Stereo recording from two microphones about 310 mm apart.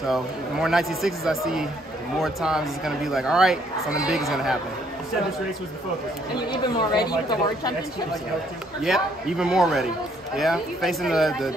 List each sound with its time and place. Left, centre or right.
0.1 s speech: centre
6.9 s speech: centre
8.8 s speech: centre